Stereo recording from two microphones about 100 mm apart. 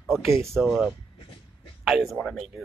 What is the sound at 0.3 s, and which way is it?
Speech, 30° right (ahead or behind).